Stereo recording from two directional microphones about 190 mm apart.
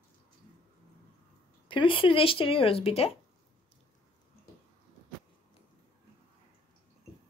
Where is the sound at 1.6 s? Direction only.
25° left (ahead or behind).